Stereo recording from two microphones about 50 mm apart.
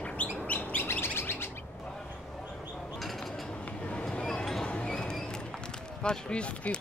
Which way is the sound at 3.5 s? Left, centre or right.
Left.